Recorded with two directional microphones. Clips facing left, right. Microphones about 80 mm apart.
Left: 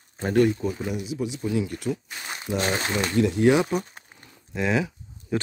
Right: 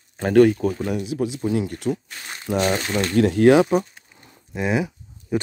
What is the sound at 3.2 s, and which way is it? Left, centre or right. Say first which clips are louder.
Speech: right 4 dB; right.